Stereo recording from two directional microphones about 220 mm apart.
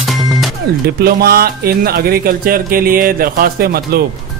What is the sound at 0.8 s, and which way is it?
Speech, 45° right (ahead or behind).